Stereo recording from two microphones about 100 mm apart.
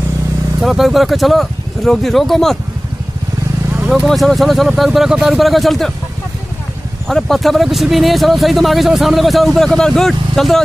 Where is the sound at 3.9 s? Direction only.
Centre (ahead or behind).